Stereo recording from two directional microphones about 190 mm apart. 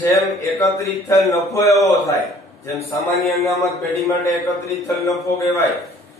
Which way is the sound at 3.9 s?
15° left (ahead or behind).